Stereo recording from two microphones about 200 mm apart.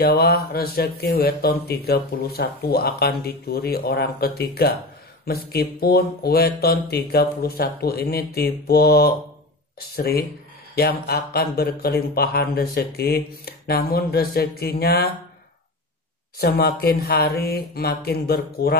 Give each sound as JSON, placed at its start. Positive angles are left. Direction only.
{"t": 0.0, "sound": "speech", "side_deg": 50}
{"t": 16.3, "sound": "speech", "side_deg": 50}